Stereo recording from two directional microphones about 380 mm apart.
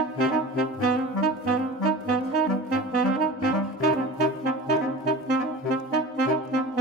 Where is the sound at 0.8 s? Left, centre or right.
Right.